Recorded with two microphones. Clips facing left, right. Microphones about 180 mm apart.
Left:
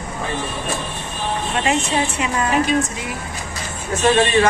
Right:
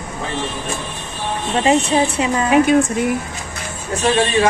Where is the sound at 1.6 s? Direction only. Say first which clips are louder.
Right 6 dB; 30° right (ahead or behind).